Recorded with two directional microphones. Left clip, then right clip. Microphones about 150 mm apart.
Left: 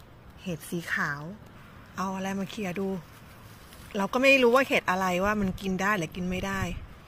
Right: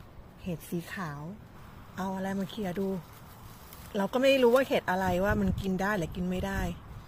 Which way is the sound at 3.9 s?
15° right (ahead or behind).